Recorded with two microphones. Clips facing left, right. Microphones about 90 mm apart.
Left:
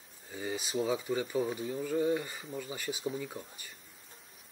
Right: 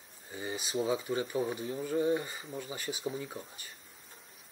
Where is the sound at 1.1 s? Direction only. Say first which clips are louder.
Even; 10° right (ahead or behind).